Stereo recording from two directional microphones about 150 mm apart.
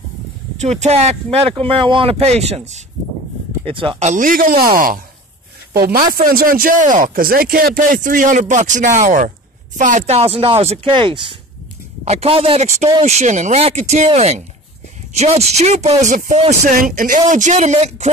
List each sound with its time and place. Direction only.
0.6 s speech: 50° right (ahead or behind)
1.5 s speech: 35° right (ahead or behind)
3.6 s speech: 35° right (ahead or behind)
4.0 s a man's voice: 60° right (ahead or behind); by 11.3 s 35° right (ahead or behind)
12.0 s speech: 45° right (ahead or behind)
16.9 s a man's voice: 65° right (ahead or behind)
17.3 s speech: 55° right (ahead or behind)